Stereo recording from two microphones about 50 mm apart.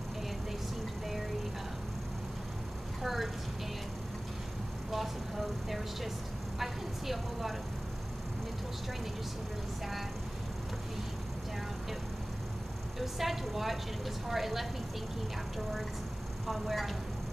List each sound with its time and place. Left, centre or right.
3.0 s a sound: centre
4.9 s vehicle: centre
13.0 s a woman's voice: centre
16.4 s a woman's voice: centre